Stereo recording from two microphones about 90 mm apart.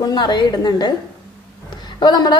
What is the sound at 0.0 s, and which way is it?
Speech, 50° left (ahead or behind).